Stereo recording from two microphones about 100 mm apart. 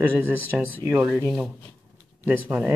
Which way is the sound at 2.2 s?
20° right (ahead or behind).